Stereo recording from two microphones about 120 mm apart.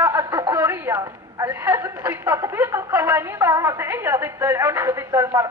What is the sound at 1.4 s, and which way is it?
A woman's voice, 20° right (ahead or behind).